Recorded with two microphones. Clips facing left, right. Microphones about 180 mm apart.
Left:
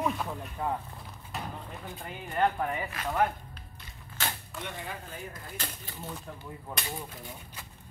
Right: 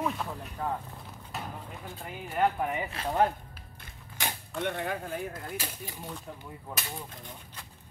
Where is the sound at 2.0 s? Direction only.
5° right (ahead or behind).